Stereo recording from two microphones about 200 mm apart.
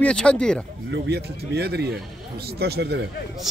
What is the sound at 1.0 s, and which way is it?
Speech, 55° right (ahead or behind).